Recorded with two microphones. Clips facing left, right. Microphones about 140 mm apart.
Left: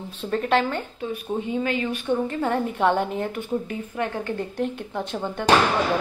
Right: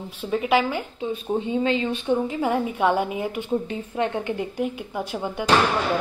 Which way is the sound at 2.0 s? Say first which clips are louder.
Right 1 dB; 10° right (ahead or behind).